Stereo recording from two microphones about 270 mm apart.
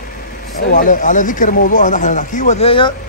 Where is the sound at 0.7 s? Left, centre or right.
Left.